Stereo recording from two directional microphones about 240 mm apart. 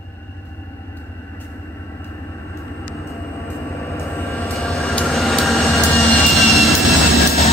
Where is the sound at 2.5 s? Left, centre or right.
Centre.